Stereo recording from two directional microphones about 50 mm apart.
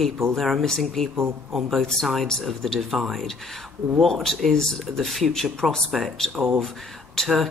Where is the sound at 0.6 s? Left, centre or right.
Centre.